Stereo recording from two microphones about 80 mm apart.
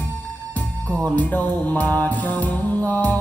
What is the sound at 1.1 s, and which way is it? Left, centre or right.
Music, left.